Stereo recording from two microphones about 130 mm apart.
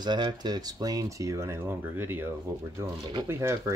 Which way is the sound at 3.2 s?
20° right (ahead or behind).